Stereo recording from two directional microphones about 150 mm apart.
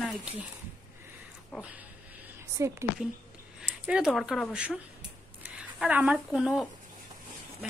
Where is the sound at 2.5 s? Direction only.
20° right (ahead or behind).